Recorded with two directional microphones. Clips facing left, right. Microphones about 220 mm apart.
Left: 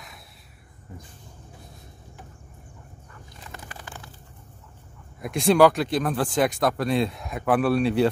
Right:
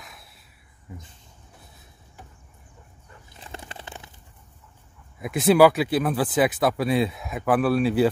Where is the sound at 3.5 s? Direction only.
25° right (ahead or behind).